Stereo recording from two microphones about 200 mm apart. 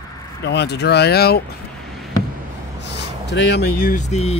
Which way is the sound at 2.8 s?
60° left (ahead or behind).